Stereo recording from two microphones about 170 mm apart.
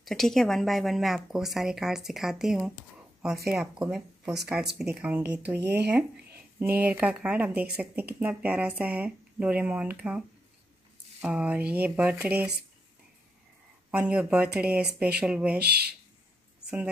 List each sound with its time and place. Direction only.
0.0 s a woman's voice: centre (ahead or behind)
11.2 s speech: 5° right (ahead or behind)
13.8 s speech: 5° right (ahead or behind)
15.5 s speech: 70° right (ahead or behind)